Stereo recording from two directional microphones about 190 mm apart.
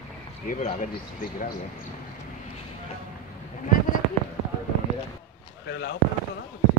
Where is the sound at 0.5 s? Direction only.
40° left (ahead or behind).